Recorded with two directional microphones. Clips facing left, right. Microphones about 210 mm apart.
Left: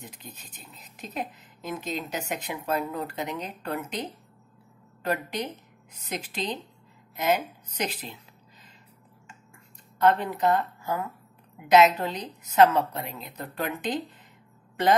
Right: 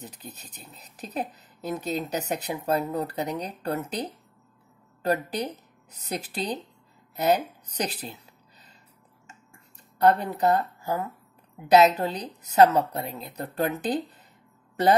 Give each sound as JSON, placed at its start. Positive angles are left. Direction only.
{"t": 0.0, "sound": "speech", "side_deg": -35}
{"t": 7.2, "sound": "speech", "side_deg": -35}
{"t": 9.9, "sound": "speech", "side_deg": -35}